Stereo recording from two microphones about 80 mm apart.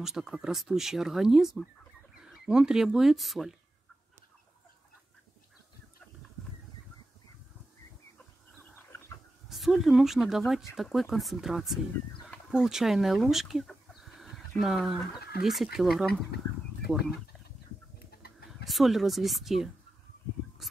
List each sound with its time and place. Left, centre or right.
0.0 s speech: centre
9.5 s speech: centre
13.7 s chicken: centre
14.6 s speech: centre
18.5 s speech: centre
20.6 s fowl: centre